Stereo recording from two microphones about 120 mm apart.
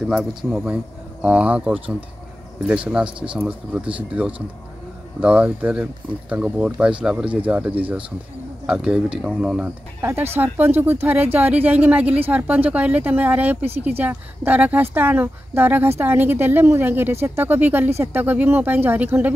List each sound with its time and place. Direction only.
0.0 s speech: 5° right (ahead or behind)
10.3 s speech: 15° right (ahead or behind)